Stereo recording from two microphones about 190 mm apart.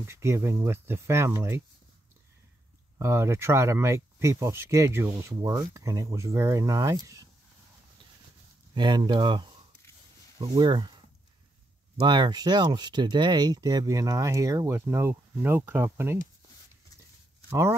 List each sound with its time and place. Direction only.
0.0 s speech: 15° right (ahead or behind)
3.0 s speech: 15° right (ahead or behind)
8.7 s speech: 25° right (ahead or behind)
12.0 s speech: 25° right (ahead or behind)
17.5 s speech: 15° right (ahead or behind)